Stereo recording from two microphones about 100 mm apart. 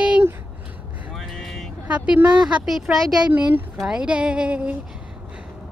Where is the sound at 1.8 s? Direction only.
15° right (ahead or behind).